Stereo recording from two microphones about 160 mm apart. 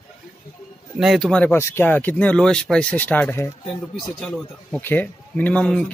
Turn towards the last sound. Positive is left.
turn(degrees=5)  # may be behind; listen again after turning